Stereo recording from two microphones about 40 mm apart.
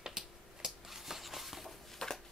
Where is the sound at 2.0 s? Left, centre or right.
Centre.